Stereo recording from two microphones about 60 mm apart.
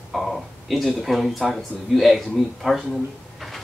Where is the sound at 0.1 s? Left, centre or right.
Centre.